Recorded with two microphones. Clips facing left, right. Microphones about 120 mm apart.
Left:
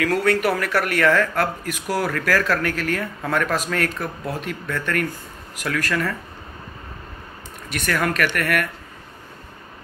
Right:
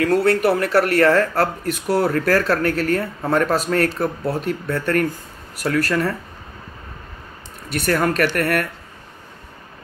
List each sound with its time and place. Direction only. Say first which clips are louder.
0.0 s speech: right 3 dB; 30° right (ahead or behind)
7.7 s speech: right 4 dB; 35° right (ahead or behind)